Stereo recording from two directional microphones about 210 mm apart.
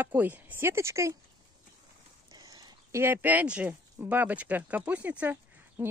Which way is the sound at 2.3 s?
20° right (ahead or behind).